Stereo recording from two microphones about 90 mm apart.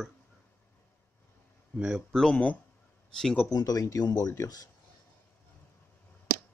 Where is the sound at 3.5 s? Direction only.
45° left (ahead or behind).